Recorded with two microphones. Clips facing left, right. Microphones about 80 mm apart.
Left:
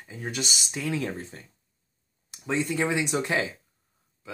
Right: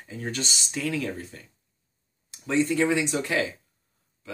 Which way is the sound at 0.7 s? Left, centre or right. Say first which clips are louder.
Right 2 dB; left.